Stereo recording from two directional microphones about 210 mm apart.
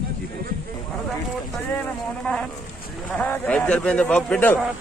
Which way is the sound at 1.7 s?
5° left (ahead or behind).